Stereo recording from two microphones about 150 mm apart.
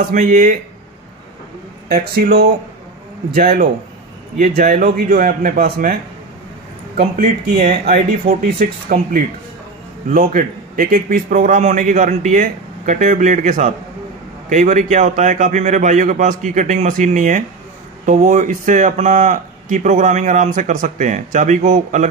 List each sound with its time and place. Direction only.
0.1 s speech: 55° right (ahead or behind)
1.9 s speech: 90° right
3.3 s a man's voice: 70° right (ahead or behind)
7.6 s a man's voice: 85° right; by 22.0 s 55° right (ahead or behind)